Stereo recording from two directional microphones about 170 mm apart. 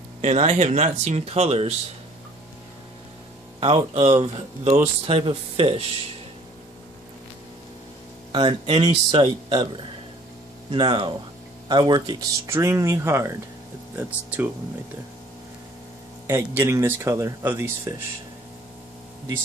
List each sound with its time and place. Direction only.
0.2 s a man's voice: 40° right (ahead or behind)
3.5 s a man's voice: 35° right (ahead or behind)
8.3 s a man's voice: 30° right (ahead or behind); by 14.5 s 10° right (ahead or behind)
16.3 s speech: 15° right (ahead or behind)